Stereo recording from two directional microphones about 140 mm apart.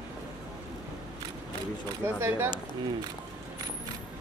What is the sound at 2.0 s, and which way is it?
Speech, 15° right (ahead or behind).